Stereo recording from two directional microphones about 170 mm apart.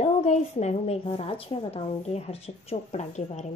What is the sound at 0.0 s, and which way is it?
A woman's voice, 40° left (ahead or behind).